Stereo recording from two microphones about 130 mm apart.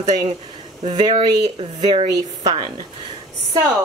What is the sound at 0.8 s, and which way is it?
Speech, 40° right (ahead or behind).